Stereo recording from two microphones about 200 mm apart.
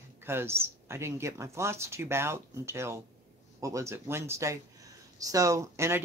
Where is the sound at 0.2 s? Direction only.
10° right (ahead or behind).